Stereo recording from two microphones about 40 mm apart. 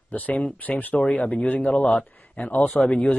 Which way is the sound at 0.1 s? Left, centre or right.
Left.